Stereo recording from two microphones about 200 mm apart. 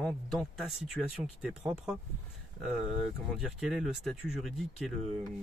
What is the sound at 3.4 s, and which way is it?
Speech, centre (ahead or behind).